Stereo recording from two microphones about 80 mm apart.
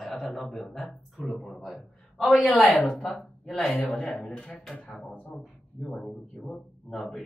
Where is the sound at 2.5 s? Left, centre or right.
Centre.